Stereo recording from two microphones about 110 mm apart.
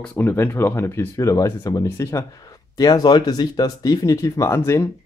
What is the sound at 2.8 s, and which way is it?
Speech, 40° left (ahead or behind).